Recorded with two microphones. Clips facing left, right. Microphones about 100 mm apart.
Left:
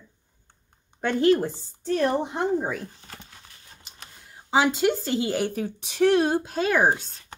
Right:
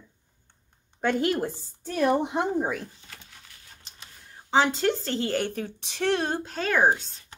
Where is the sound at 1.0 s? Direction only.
5° right (ahead or behind).